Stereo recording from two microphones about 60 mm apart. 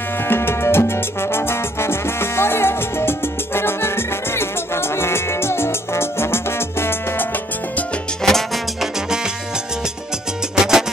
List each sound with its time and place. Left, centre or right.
0.3 s music: left
4.9 s music: left
8.2 s music: centre
10.5 s music: centre